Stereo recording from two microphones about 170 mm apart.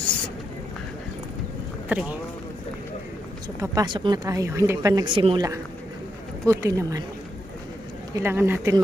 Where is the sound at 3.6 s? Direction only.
25° right (ahead or behind).